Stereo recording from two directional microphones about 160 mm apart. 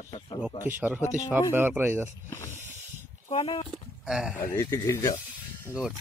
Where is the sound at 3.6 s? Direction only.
5° right (ahead or behind).